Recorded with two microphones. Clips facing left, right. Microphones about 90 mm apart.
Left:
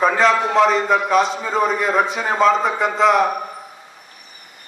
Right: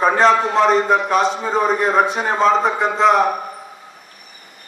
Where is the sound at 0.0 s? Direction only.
40° right (ahead or behind).